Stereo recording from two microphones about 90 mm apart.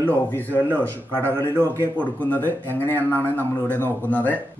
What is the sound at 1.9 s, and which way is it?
Speech, 20° left (ahead or behind).